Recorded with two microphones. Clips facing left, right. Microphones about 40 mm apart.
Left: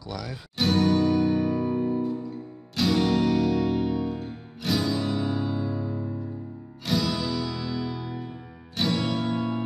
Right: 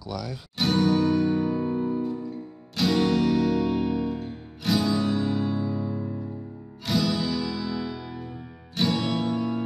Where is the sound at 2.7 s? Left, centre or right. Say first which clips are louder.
Even; centre.